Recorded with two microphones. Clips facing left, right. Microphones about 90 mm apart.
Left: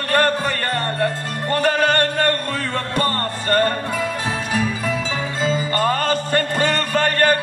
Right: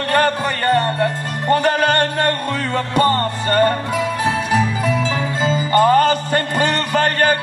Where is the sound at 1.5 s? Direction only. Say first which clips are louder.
Right 3 dB; 10° right (ahead or behind).